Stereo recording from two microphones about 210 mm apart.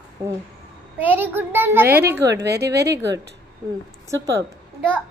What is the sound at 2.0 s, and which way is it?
Speech, 50° right (ahead or behind).